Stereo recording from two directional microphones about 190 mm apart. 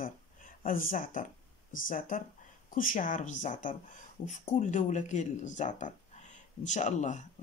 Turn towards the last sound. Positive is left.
turn(degrees=40)  # may be behind; listen again after turning